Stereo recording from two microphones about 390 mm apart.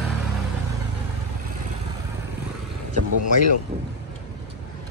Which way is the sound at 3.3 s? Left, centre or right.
Left.